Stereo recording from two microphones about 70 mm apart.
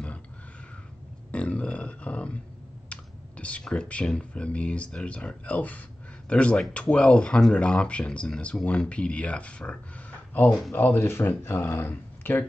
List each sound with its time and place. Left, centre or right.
1.3 s a sound: centre
2.9 s speech: centre
10.7 s speech: left